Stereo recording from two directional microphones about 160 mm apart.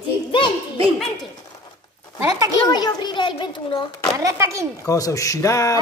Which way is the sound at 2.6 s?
25° left (ahead or behind).